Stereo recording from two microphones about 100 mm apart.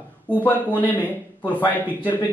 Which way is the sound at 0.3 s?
20° left (ahead or behind).